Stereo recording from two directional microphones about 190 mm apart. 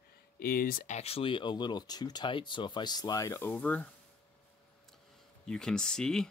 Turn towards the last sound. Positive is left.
turn(degrees=5)  # may be behind; listen again after turning